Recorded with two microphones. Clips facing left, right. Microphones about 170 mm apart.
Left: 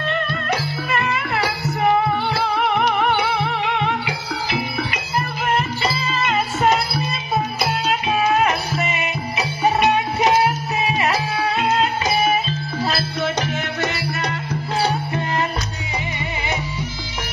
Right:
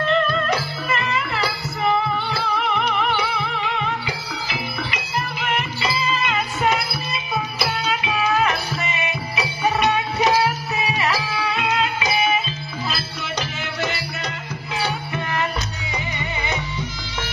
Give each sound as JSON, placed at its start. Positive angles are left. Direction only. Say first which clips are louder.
{"t": 0.5, "sound": "music", "louder": "left 1 dB", "side_deg": 60}
{"t": 5.4, "sound": "music", "louder": "left 6 dB", "side_deg": 40}
{"t": 8.0, "sound": "music", "louder": "left 3 dB", "side_deg": 30}
{"t": 11.1, "sound": "music", "louder": "left 2 dB", "side_deg": 30}
{"t": 12.9, "sound": "music", "louder": "left 6 dB", "side_deg": 55}
{"t": 14.8, "sound": "music", "louder": "left 4 dB", "side_deg": 35}